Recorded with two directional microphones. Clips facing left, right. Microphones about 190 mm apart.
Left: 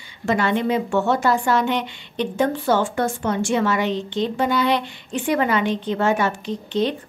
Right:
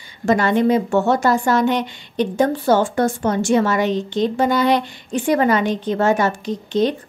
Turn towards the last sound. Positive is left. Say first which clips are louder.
# right 3 dB
turn(degrees=-40)  # may be behind; listen again after turning